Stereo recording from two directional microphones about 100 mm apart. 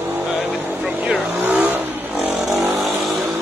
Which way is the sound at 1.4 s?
15° right (ahead or behind).